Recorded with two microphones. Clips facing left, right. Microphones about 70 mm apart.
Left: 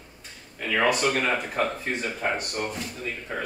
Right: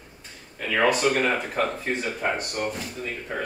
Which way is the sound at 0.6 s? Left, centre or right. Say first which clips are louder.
Right 2 dB; centre.